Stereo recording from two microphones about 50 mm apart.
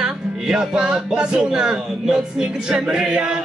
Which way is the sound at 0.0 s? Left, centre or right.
Centre.